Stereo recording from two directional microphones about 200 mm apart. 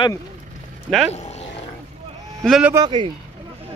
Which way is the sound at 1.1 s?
30° left (ahead or behind).